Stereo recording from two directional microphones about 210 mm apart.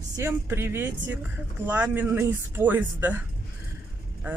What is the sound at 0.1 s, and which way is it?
Speech, 10° right (ahead or behind).